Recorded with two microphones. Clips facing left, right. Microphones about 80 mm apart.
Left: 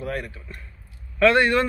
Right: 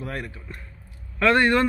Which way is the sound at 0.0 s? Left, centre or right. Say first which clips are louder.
Left 3 dB; right.